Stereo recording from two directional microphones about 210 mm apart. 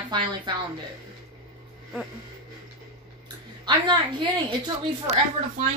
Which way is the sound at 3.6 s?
20° right (ahead or behind).